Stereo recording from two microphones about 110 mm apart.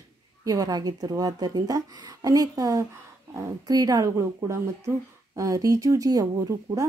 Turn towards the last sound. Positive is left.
turn(degrees=-30)  # may be behind; listen again after turning